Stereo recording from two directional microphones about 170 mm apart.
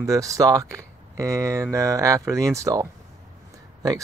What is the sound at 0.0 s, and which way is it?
Speech, 20° right (ahead or behind).